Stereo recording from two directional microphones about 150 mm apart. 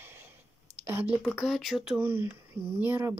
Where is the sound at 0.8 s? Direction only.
15° right (ahead or behind).